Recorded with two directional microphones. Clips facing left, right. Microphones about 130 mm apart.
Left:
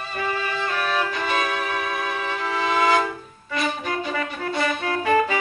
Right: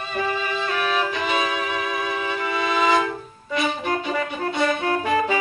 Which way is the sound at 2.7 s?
Centre (ahead or behind).